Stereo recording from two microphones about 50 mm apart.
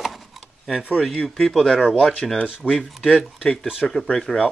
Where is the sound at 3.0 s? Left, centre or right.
Left.